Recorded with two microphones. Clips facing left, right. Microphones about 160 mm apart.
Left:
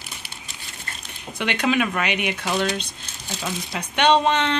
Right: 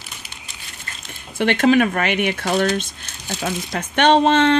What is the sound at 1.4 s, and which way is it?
Speech, 50° right (ahead or behind).